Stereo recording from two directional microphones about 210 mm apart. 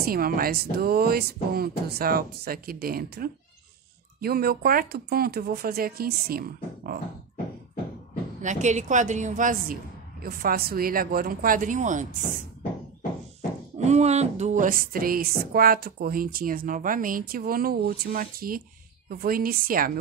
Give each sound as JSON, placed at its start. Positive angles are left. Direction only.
{"t": 0.0, "sound": "speech", "side_deg": -45}
{"t": 8.4, "sound": "a woman's voice", "side_deg": -35}
{"t": 13.8, "sound": "speech", "side_deg": -30}